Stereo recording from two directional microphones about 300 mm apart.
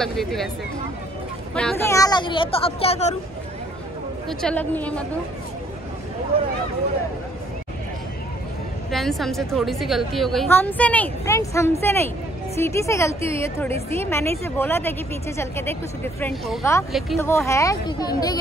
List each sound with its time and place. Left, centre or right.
0.0 s a woman's voice: centre
1.5 s speech: centre; by 3.2 s left
4.3 s a woman's voice: centre
8.9 s a woman's voice: centre